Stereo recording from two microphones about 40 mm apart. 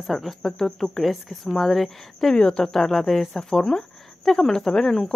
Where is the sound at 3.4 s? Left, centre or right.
Centre.